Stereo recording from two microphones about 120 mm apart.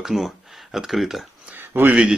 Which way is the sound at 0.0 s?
Centre (ahead or behind).